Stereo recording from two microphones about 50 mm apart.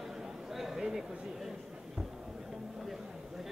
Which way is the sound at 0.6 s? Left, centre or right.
Centre.